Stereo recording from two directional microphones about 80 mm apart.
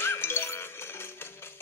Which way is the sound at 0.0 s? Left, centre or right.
Left.